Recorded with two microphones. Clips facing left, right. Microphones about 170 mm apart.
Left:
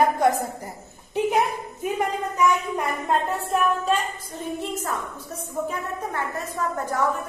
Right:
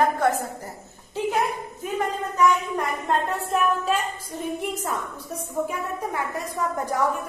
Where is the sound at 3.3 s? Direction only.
Centre (ahead or behind).